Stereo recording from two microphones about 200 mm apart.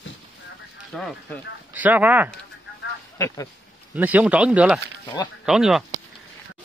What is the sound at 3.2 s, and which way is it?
Speech, 15° left (ahead or behind).